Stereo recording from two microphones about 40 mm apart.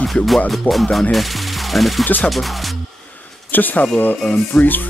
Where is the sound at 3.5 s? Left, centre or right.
Left.